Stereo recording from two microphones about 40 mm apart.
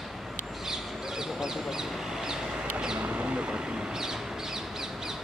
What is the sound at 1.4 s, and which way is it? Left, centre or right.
Duck, centre.